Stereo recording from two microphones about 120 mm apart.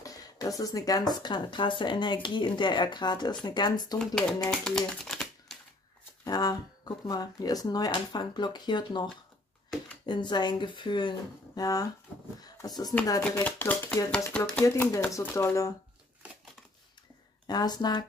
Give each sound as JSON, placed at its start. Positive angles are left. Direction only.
{"t": 0.0, "sound": "speech", "side_deg": 30}
{"t": 4.0, "sound": "speech", "side_deg": 5}
{"t": 6.2, "sound": "speech", "side_deg": 30}
{"t": 11.6, "sound": "speech", "side_deg": 30}
{"t": 13.2, "sound": "speech", "side_deg": 10}
{"t": 14.6, "sound": "speech", "side_deg": 25}
{"t": 17.5, "sound": "speech", "side_deg": 35}